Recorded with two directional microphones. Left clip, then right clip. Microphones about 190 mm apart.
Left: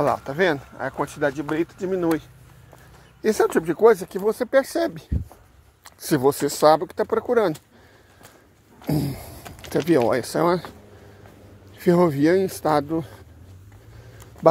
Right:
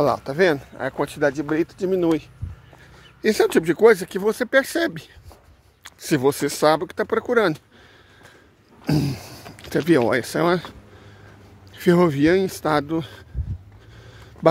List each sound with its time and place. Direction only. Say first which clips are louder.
0.0 s speech: right 2 dB; 15° right (ahead or behind)
3.7 s speech: right 1 dB; 30° right (ahead or behind)
5.9 s speech: even; 10° right (ahead or behind)
8.8 s a sound: right 2 dB; 30° right (ahead or behind)
9.7 s speech: right 1 dB; 20° right (ahead or behind)
11.7 s speech: right 1 dB; 20° right (ahead or behind)